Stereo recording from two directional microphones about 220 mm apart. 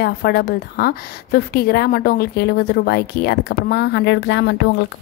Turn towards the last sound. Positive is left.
turn(degrees=55)  # may be behind; listen again after turning